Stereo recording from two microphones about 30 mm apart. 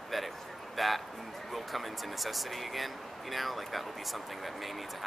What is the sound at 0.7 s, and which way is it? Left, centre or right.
Speech, centre.